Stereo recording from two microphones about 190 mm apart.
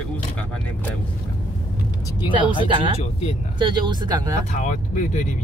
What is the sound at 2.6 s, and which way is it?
Speech, 25° right (ahead or behind).